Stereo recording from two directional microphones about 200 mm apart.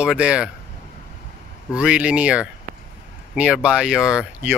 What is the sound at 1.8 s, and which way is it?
Speech, 5° right (ahead or behind).